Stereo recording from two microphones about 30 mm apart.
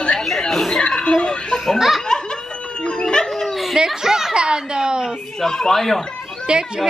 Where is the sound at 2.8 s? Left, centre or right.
Left.